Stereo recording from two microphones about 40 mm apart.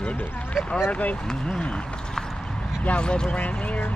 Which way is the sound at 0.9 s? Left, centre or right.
Left.